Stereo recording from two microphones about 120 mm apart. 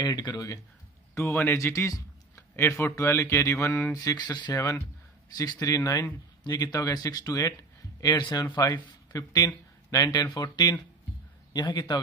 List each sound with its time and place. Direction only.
0.0 s speech: 35° left (ahead or behind)
1.1 s a man's voice: 20° left (ahead or behind)
3.9 s speech: 35° left (ahead or behind)
4.5 s speech: 20° left (ahead or behind)
5.3 s a man's voice: 30° left (ahead or behind)